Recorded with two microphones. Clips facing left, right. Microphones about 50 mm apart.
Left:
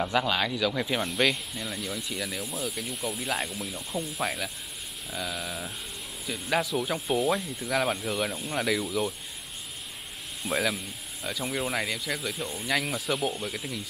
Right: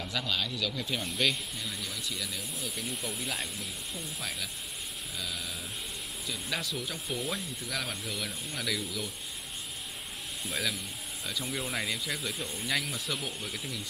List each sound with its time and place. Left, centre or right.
0.1 s speech: left
1.1 s speech: centre
1.6 s speech: left
2.6 s speech: centre
3.9 s speech: left
5.1 s speech: centre
6.8 s speech: left
7.3 s speech: centre
8.1 s speech: left
10.4 s speech: centre